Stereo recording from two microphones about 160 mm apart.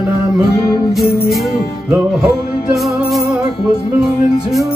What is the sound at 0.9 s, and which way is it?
Music, centre (ahead or behind).